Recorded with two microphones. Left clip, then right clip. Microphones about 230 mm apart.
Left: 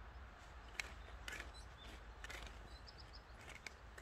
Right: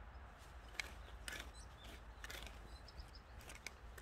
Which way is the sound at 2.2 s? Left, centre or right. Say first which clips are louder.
Even; right.